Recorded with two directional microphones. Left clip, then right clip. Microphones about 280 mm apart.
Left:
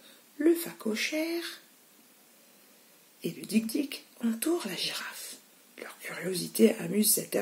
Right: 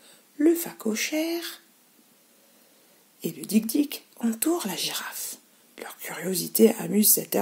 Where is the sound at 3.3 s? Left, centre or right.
Right.